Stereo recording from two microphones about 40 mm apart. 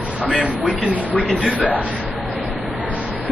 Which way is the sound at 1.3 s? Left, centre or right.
Left.